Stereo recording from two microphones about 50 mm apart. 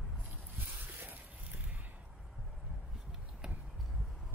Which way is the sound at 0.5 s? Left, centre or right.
Right.